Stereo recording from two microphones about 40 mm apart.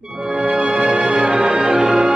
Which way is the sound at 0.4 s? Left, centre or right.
Right.